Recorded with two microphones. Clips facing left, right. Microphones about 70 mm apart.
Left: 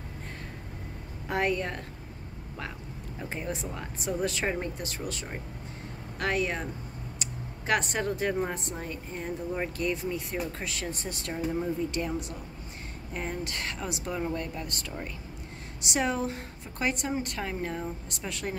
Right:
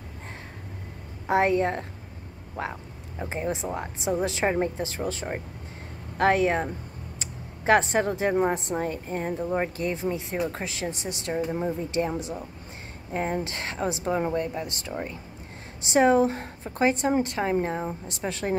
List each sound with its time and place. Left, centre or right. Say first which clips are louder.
1.2 s a woman's voice: right 7 dB; right
3.2 s a woman's voice: right 6 dB; right
8.7 s speech: right 8 dB; right; by 11.4 s centre
11.6 s a woman's voice: right 4 dB; right